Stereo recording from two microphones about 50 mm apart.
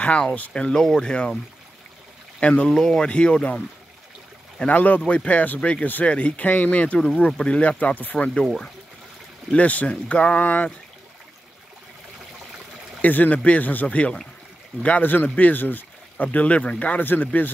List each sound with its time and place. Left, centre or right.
0.0 s speech: left
2.4 s speech: left
2.7 s speech: centre
4.6 s speech: left
7.2 s speech: left
9.5 s speech: left
13.0 s speech: left
17.0 s speech: left